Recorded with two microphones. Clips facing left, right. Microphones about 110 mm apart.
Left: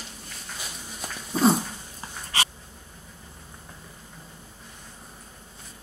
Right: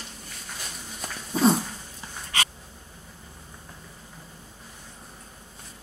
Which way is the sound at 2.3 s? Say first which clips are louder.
Even; 30° left (ahead or behind).